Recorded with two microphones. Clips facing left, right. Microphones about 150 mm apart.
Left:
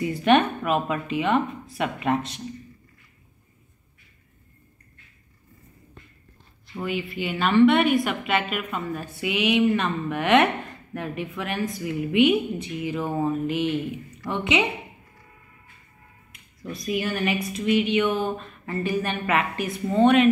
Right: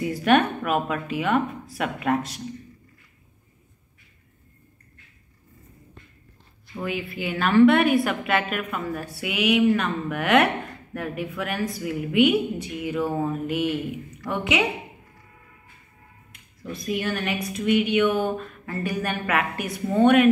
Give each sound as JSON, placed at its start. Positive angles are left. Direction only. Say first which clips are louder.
{"t": 0.0, "sound": "a woman's voice", "louder": "even", "side_deg": 0}
{"t": 6.8, "sound": "a woman's voice", "louder": "left 1 dB", "side_deg": 0}
{"t": 16.8, "sound": "a woman's voice", "louder": "left 1 dB", "side_deg": 5}